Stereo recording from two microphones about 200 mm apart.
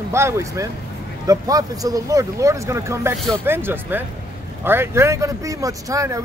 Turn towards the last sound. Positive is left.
turn(degrees=-15)  # may be behind; listen again after turning